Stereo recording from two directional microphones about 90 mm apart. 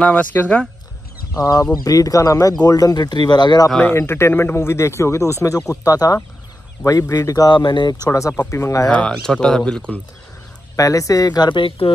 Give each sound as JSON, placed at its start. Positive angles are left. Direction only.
{"t": 0.0, "sound": "speech", "side_deg": 15}
{"t": 1.3, "sound": "speech", "side_deg": 40}
{"t": 3.8, "sound": "speech", "side_deg": 25}
{"t": 7.5, "sound": "speech", "side_deg": 60}
{"t": 8.1, "sound": "speech", "side_deg": 35}
{"t": 9.1, "sound": "speech", "side_deg": 5}
{"t": 10.8, "sound": "speech", "side_deg": 40}